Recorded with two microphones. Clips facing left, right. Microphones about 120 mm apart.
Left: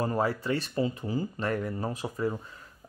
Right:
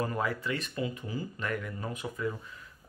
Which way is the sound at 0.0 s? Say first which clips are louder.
Left 4 dB; 30° left (ahead or behind).